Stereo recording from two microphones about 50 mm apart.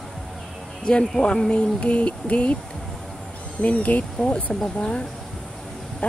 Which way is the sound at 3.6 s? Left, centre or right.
Left.